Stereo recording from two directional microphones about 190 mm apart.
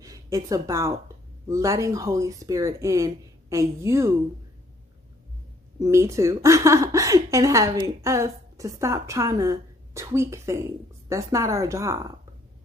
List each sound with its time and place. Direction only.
0.0 s speech: 20° right (ahead or behind)
5.8 s speech: 15° right (ahead or behind)